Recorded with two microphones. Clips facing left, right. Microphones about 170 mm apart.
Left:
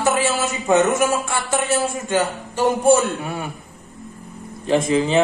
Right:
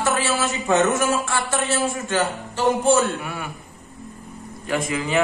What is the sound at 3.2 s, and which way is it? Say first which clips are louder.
Speech: left 4 dB; 25° left (ahead or behind).